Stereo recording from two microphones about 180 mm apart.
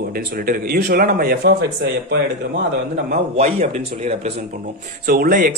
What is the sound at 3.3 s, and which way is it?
Speech, 35° right (ahead or behind).